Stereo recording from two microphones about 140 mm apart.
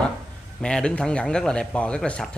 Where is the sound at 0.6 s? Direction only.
5° left (ahead or behind).